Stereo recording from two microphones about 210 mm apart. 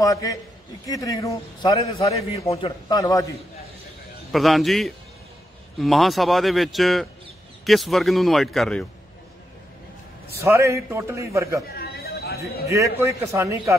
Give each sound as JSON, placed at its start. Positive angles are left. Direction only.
{"t": 0.0, "sound": "a man's voice", "side_deg": 15}
{"t": 4.3, "sound": "speech", "side_deg": 0}
{"t": 10.4, "sound": "a man's voice", "side_deg": -15}
{"t": 11.6, "sound": "a sound", "side_deg": 50}
{"t": 12.6, "sound": "a man's voice", "side_deg": -15}